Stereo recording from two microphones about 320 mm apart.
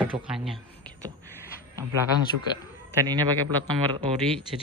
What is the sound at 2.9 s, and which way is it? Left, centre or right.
Speech, centre.